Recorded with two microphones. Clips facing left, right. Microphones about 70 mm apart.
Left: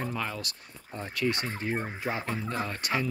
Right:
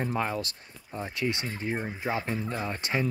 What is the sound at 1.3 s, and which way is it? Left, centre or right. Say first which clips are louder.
Fowl: left 1 dB; left.